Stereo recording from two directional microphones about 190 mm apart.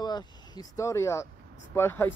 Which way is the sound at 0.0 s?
20° left (ahead or behind).